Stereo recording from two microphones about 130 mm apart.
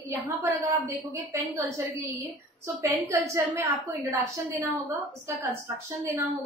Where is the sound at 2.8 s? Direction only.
25° right (ahead or behind).